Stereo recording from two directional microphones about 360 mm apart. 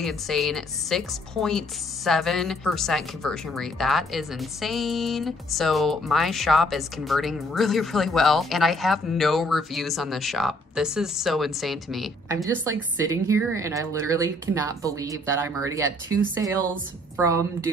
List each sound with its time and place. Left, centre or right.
0.0 s speech: centre